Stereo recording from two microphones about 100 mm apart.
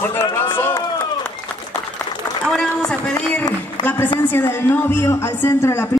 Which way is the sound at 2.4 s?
10° left (ahead or behind).